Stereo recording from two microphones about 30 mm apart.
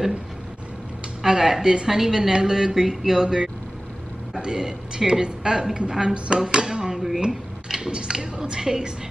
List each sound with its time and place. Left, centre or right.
1.2 s a woman's voice: centre
6.1 s speech: right
6.5 s dishes: right
7.2 s speech: right